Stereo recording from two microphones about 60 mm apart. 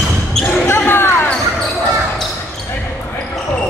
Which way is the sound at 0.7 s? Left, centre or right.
Left.